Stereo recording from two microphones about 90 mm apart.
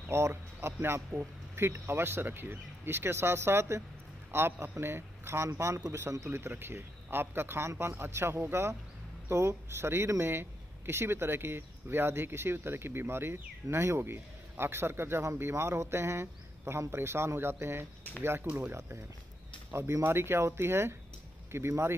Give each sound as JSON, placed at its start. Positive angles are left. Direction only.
{"t": 0.1, "sound": "speech", "side_deg": -25}
{"t": 18.5, "sound": "speech", "side_deg": -15}
{"t": 18.8, "sound": "speech", "side_deg": -30}